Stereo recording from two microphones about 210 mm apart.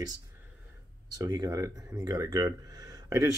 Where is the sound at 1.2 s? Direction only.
15° right (ahead or behind).